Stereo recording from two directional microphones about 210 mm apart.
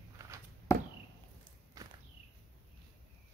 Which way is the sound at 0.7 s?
15° left (ahead or behind).